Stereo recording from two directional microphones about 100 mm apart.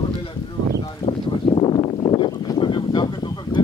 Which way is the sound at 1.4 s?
50° left (ahead or behind).